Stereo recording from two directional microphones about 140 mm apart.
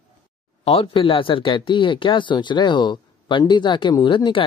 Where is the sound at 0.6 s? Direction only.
45° left (ahead or behind).